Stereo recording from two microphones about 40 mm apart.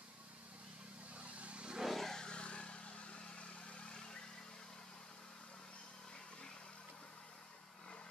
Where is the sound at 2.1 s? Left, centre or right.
Left.